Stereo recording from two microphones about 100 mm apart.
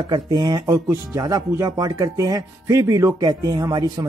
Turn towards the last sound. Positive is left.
turn(degrees=-45)  # may be behind; listen again after turning